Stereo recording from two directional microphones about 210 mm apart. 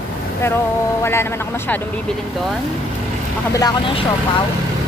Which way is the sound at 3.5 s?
20° left (ahead or behind).